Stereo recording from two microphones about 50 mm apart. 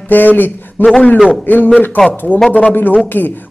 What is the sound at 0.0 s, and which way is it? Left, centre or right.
A man's voice, left.